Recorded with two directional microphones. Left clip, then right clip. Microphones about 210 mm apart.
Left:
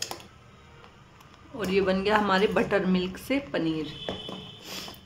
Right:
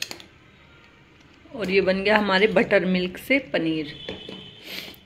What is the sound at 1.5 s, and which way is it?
A woman's voice, 5° right (ahead or behind).